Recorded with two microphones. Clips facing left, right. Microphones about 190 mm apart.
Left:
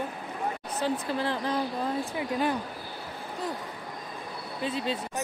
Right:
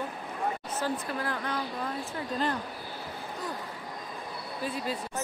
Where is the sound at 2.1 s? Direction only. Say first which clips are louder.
Left 1 dB; 10° left (ahead or behind).